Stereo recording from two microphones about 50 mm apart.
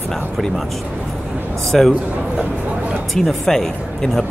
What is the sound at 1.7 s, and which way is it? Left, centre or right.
Speech, centre.